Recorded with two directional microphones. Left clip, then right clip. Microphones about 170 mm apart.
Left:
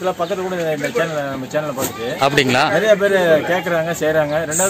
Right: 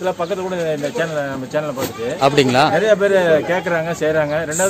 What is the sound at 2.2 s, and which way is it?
A man's voice, centre (ahead or behind).